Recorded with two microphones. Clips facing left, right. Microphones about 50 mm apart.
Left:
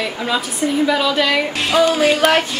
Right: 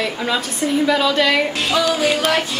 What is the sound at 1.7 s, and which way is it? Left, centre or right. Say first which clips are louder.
Music: left 4 dB; left.